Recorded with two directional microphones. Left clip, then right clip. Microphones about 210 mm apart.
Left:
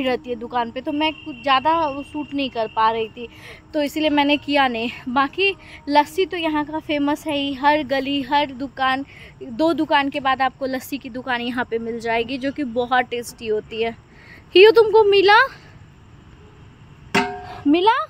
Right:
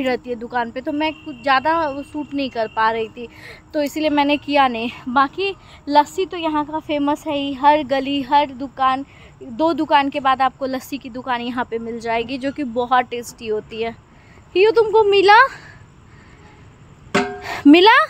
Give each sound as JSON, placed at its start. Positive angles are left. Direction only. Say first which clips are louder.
{"t": 0.0, "sound": "a woman's voice", "louder": "right 1 dB", "side_deg": 0}
{"t": 15.0, "sound": "a woman's voice", "louder": "right 2 dB", "side_deg": -10}
{"t": 17.4, "sound": "speech", "louder": "right 8 dB", "side_deg": -40}